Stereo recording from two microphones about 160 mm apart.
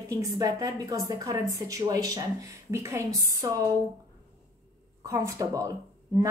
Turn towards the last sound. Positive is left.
turn(degrees=-20)  # may be behind; listen again after turning